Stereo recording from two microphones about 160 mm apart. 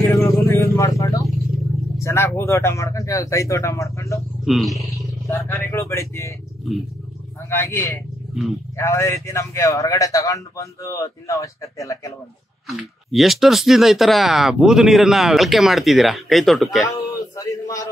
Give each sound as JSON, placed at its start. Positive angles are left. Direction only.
{"t": 0.1, "sound": "vehicle", "side_deg": 20}
{"t": 2.0, "sound": "a man's voice", "side_deg": 15}
{"t": 4.5, "sound": "speech", "side_deg": 0}
{"t": 5.2, "sound": "speech", "side_deg": 15}
{"t": 7.4, "sound": "a man's voice", "side_deg": 15}
{"t": 12.6, "sound": "speech", "side_deg": 0}
{"t": 16.9, "sound": "a sound", "side_deg": 20}